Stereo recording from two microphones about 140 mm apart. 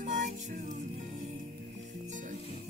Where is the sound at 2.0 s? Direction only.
65° right (ahead or behind).